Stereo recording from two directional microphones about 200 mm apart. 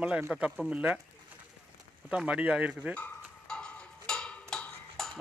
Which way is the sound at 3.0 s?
5° left (ahead or behind).